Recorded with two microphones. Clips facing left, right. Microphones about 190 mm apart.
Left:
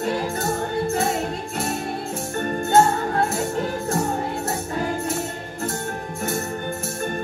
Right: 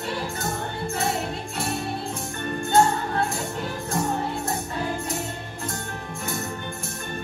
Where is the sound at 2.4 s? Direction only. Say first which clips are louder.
Left 2 dB; 45° left (ahead or behind).